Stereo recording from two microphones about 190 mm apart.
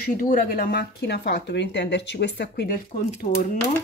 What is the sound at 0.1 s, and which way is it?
Speech, 45° left (ahead or behind).